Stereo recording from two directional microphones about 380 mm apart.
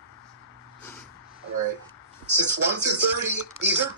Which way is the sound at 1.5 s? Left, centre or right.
Right.